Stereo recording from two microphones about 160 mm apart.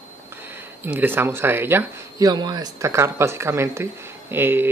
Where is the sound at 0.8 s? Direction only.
10° right (ahead or behind).